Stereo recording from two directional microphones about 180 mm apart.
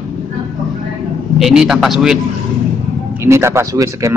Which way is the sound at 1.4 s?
Centre (ahead or behind).